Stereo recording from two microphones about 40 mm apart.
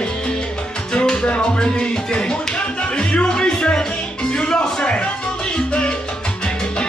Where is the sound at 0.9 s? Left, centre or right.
Left.